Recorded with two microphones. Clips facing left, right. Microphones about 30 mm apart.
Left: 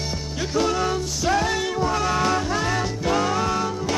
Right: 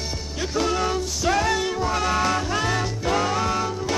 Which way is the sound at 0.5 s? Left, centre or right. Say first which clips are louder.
Left 1 dB; centre.